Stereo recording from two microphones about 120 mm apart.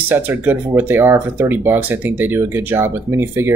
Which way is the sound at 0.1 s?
15° right (ahead or behind).